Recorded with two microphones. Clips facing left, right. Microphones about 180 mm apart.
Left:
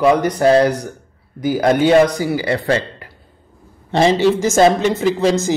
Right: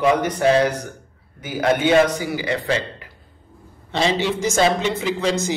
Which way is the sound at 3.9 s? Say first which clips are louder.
Left 7 dB; 45° left (ahead or behind).